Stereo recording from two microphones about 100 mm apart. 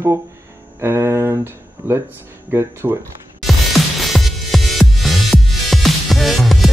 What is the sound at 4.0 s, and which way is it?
Music, centre (ahead or behind).